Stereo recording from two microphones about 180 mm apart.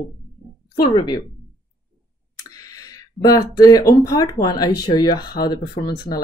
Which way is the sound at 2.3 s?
20° left (ahead or behind).